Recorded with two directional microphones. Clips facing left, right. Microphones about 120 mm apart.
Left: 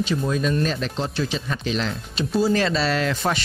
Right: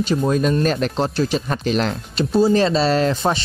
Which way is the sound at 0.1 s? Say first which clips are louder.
Right 7 dB; 45° right (ahead or behind).